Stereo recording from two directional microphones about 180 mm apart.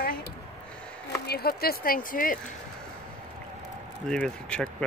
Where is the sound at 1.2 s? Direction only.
60° left (ahead or behind).